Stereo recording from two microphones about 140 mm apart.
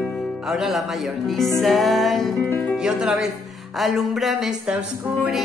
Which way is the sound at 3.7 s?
Centre (ahead or behind).